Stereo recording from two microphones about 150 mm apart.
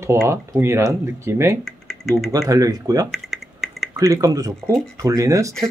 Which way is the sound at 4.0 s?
25° right (ahead or behind).